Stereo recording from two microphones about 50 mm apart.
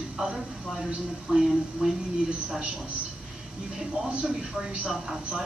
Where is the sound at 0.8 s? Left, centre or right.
Centre.